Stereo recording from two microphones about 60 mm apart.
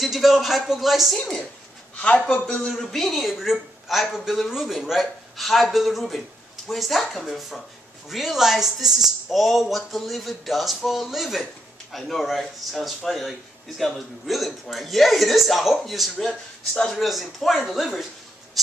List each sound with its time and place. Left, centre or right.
0.0 s a man's voice: centre
2.0 s a man's voice: centre
16.7 s speech: centre
17.0 s a man's voice: centre